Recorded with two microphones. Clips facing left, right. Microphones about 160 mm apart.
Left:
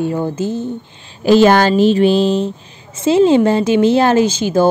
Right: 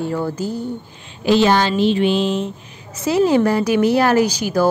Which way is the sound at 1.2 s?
45° left (ahead or behind).